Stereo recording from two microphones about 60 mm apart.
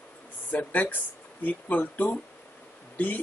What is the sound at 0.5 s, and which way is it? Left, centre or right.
Speech, left.